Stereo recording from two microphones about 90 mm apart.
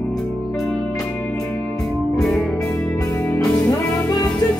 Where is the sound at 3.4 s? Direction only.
45° left (ahead or behind).